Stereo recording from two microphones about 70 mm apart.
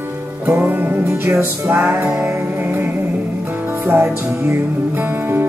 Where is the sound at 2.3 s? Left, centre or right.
Right.